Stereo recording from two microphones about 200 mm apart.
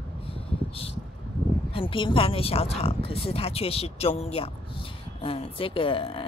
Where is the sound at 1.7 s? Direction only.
25° left (ahead or behind).